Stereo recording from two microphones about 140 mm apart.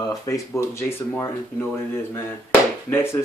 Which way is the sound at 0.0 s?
30° left (ahead or behind).